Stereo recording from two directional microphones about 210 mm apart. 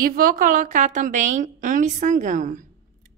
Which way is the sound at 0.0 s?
45° right (ahead or behind).